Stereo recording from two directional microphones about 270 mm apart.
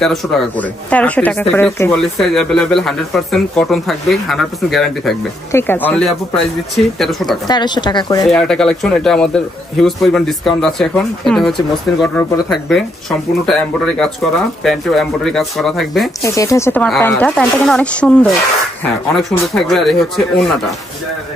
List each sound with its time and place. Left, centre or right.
0.0 s speech: centre
7.4 s speech: centre
8.3 s speech: centre
16.2 s speech: centre
19.4 s speech: centre